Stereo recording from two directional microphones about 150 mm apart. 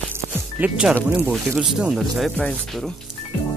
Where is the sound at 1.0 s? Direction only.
15° right (ahead or behind).